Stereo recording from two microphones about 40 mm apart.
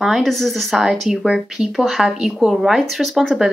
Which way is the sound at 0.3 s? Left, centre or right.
Centre.